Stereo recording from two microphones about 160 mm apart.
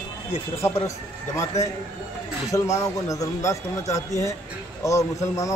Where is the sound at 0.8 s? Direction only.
20° left (ahead or behind).